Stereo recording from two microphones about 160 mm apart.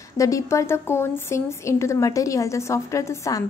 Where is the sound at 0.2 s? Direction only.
20° left (ahead or behind).